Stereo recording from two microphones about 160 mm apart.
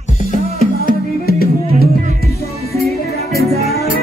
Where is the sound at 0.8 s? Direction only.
70° left (ahead or behind).